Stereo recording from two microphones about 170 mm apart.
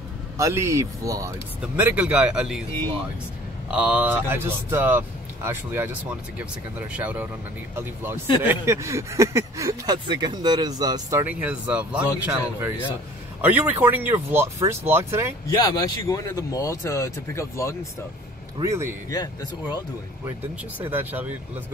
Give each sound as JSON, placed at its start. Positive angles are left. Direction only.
{"t": 0.4, "sound": "speech", "side_deg": -15}
{"t": 3.7, "sound": "speech", "side_deg": -10}
{"t": 15.5, "sound": "speech", "side_deg": 25}
{"t": 18.6, "sound": "speech", "side_deg": -15}
{"t": 20.8, "sound": "speech", "side_deg": -10}